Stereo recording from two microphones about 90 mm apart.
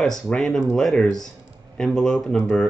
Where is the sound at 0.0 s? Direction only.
5° left (ahead or behind).